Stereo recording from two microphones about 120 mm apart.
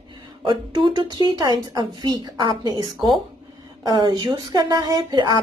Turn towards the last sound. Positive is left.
turn(degrees=-40)  # may be behind; listen again after turning